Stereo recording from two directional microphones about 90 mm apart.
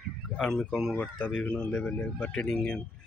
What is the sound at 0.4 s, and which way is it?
Speech, 5° left (ahead or behind).